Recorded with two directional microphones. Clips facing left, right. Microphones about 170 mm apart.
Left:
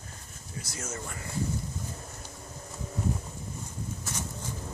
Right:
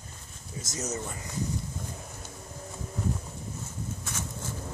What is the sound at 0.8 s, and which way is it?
Speech, 20° right (ahead or behind).